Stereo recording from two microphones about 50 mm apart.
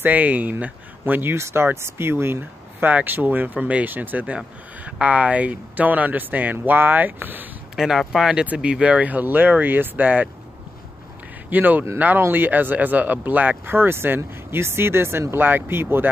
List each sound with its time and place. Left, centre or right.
0.0 s speech: right
1.3 s speech: right
2.8 s speech: right
4.8 s speech: right
7.7 s speech: centre
8.6 s speech: right
11.5 s speech: right